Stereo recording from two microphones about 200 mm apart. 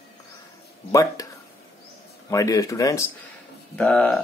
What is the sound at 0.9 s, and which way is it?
Speech, 15° left (ahead or behind).